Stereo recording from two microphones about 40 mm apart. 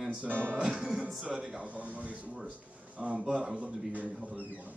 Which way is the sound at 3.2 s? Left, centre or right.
Right.